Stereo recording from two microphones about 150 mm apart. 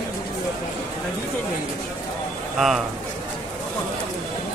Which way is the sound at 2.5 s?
Centre (ahead or behind).